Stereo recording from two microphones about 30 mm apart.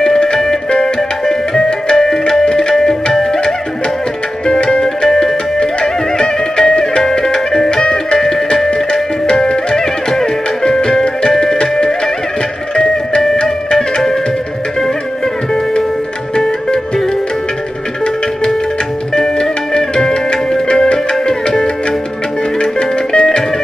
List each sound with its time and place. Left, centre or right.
0.0 s music: centre
0.7 s tabla: left
2.7 s tabla: centre
4.8 s music: centre
7.7 s music: left
12.7 s music: left
16.3 s music: left
18.0 s music: left
20.2 s music: left
20.9 s tabla: left
22.6 s music: left